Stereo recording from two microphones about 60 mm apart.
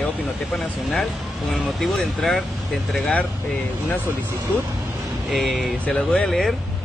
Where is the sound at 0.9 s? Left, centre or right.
Centre.